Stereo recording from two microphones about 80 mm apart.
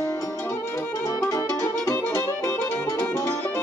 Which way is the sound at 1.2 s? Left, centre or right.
Left.